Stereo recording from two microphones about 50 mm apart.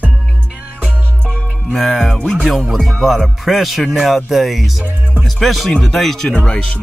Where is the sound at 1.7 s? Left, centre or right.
Centre.